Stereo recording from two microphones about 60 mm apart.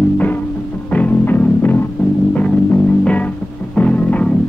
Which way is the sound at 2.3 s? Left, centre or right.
Left.